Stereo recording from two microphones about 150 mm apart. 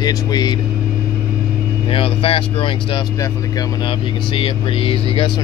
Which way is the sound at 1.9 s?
40° left (ahead or behind).